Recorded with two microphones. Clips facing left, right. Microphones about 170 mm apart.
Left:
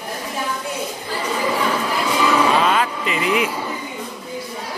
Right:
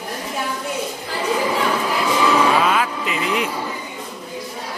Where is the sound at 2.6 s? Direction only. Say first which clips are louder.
Left 1 dB; 5° right (ahead or behind).